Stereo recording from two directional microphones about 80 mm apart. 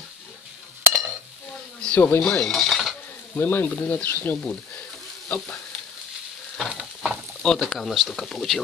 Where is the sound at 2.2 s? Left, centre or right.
Centre.